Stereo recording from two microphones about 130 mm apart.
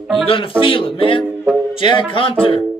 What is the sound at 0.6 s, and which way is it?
Speech, 40° left (ahead or behind).